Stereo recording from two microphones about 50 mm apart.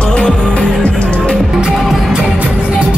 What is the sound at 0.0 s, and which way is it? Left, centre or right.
Music, left.